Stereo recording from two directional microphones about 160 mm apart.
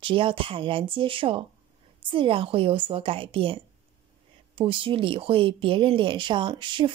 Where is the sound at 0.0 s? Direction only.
35° right (ahead or behind).